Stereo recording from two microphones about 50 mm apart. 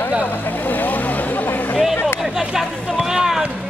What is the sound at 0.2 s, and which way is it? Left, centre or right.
Vehicle, left.